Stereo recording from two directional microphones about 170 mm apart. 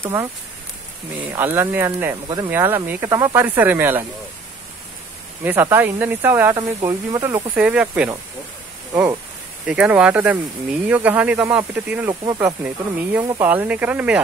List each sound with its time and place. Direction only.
0.0 s speech: 15° right (ahead or behind)
2.2 s speech: 25° right (ahead or behind)
2.5 s speech: 10° right (ahead or behind)
5.4 s speech: 10° right (ahead or behind)
9.7 s speech: 5° right (ahead or behind)